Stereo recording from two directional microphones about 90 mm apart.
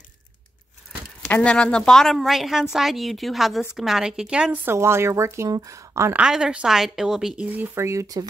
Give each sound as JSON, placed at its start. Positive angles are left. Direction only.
{"t": 1.3, "sound": "a woman's voice", "side_deg": 10}
{"t": 4.6, "sound": "speech", "side_deg": -30}
{"t": 6.1, "sound": "speech", "side_deg": -10}
{"t": 7.5, "sound": "speech", "side_deg": -30}